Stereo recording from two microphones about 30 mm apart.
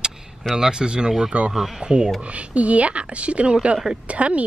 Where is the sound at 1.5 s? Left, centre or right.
Centre.